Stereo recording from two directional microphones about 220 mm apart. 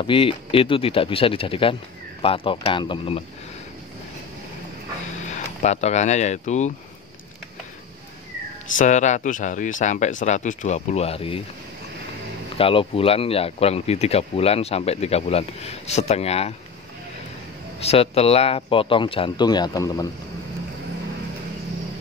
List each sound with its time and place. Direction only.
0.0 s speech: 25° left (ahead or behind)
5.3 s speech: 30° left (ahead or behind)
8.7 s speech: 35° left (ahead or behind)
12.5 s speech: 25° left (ahead or behind)
17.7 s speech: 25° left (ahead or behind)